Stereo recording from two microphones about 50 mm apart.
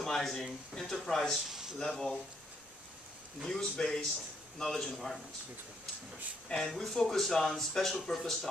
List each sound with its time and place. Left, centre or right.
0.0 s speech: centre
3.4 s speech: centre
6.5 s speech: centre